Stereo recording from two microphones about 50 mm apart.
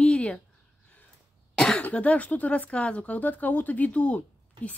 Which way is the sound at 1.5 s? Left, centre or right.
Centre.